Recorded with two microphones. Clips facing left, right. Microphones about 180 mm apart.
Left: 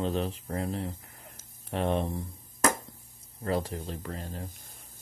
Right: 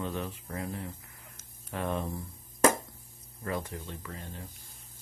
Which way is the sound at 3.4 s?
30° left (ahead or behind).